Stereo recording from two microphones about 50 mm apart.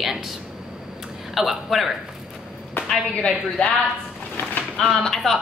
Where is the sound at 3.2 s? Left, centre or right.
Left.